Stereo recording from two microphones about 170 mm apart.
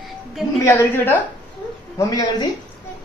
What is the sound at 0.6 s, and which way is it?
A woman's voice, 10° left (ahead or behind).